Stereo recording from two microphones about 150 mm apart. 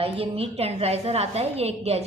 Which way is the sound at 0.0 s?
40° right (ahead or behind).